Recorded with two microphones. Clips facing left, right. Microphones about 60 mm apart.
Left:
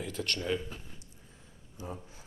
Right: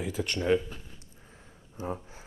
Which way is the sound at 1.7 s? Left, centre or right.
Right.